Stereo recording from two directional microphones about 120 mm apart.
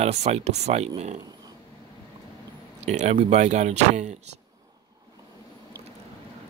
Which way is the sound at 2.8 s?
70° right (ahead or behind).